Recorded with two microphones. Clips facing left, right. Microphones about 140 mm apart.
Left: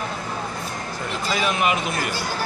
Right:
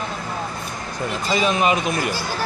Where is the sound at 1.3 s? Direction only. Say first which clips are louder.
Right 3 dB; 25° right (ahead or behind).